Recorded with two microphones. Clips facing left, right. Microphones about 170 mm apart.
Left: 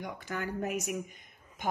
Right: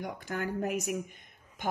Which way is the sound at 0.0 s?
45° right (ahead or behind).